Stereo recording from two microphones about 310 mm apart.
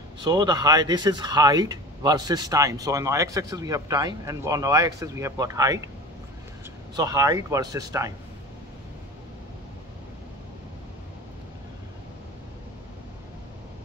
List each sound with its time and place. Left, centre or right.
0.2 s speech: centre
7.0 s speech: centre